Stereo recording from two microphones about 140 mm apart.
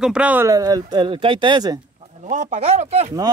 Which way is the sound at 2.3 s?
60° right (ahead or behind).